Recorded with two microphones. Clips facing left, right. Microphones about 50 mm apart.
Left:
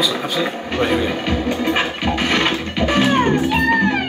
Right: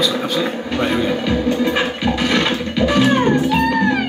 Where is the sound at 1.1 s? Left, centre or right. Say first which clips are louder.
Right 3 dB; left.